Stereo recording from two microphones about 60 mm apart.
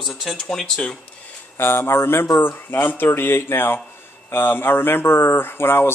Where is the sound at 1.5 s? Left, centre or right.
Left.